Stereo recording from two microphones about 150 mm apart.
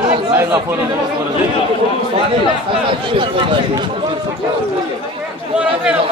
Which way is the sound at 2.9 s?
35° right (ahead or behind).